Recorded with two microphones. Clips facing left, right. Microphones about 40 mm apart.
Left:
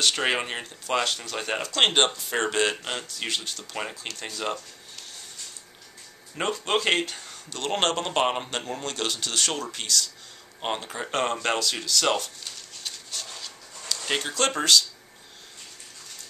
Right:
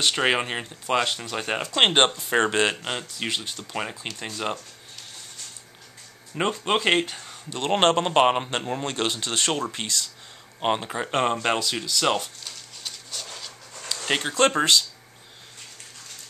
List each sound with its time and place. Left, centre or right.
0.0 s speech: centre
2.7 s speech: centre
6.3 s speech: centre
7.5 s speech: right
12.8 s a sound: centre
13.8 s a sound: centre
14.3 s speech: right